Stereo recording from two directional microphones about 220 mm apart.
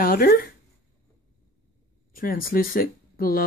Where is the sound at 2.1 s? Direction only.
40° left (ahead or behind).